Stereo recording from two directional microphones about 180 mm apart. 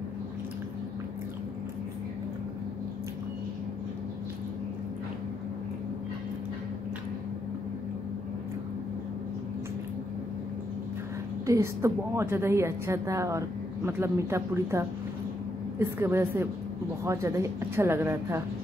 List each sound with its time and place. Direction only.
11.4 s a woman's voice: 15° right (ahead or behind)